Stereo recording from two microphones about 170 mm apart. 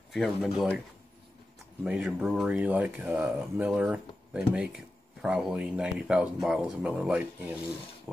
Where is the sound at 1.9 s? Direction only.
5° right (ahead or behind).